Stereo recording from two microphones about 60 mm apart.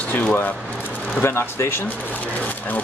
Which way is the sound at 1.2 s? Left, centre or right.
Left.